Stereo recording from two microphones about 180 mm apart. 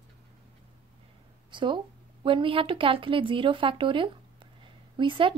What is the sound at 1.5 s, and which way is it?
A woman's voice, 25° right (ahead or behind).